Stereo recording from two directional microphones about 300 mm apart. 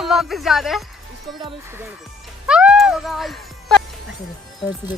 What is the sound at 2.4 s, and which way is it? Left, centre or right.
Music, centre.